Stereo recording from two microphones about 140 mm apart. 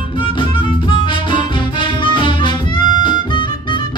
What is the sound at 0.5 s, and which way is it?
Music, 35° left (ahead or behind).